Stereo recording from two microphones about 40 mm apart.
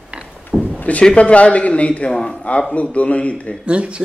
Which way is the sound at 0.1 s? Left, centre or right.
Right.